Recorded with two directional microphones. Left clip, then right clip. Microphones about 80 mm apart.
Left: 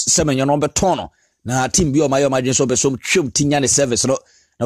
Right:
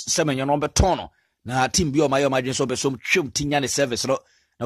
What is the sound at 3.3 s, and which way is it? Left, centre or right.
Speech, left.